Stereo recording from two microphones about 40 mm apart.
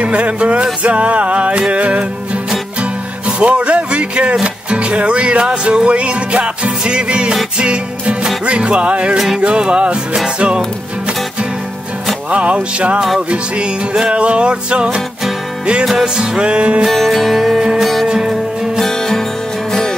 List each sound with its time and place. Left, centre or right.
0.0 s music: right
12.3 s music: right
15.8 s music: centre
16.2 s music: right
16.9 s music: centre
18.0 s music: centre
18.8 s music: centre